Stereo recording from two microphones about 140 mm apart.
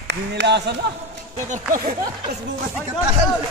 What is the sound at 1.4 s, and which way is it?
Speech, 70° right (ahead or behind).